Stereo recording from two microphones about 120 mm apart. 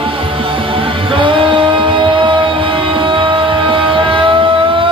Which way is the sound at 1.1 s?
45° right (ahead or behind).